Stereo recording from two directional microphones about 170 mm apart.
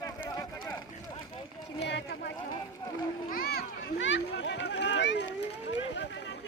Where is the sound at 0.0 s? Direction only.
20° left (ahead or behind).